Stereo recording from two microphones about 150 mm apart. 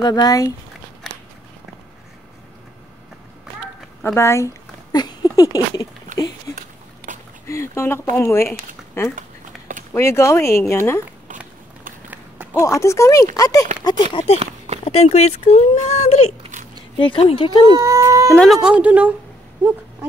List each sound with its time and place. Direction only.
0.0 s speech: 25° left (ahead or behind)
4.0 s speech: 15° left (ahead or behind)
4.9 s a sound: 30° left (ahead or behind)
7.1 s a sound: 60° right (ahead or behind)
7.4 s speech: 20° left (ahead or behind)
12.5 s speech: 20° left (ahead or behind)
14.1 s speech: 40° left (ahead or behind)
16.9 s speech: 35° left (ahead or behind)
17.6 s speech: 20° right (ahead or behind)
18.3 s speech: centre (ahead or behind)